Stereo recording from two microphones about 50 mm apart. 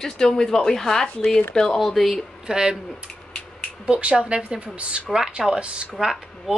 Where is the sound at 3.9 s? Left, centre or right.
Right.